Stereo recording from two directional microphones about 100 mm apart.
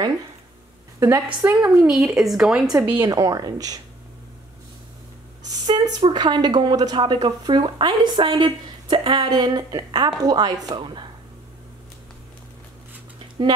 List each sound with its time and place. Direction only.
1.0 s a woman's voice: 20° right (ahead or behind)
1.8 s speech: 5° right (ahead or behind)
3.1 s a woman's voice: 40° right (ahead or behind)
5.5 s a woman's voice: 40° right (ahead or behind)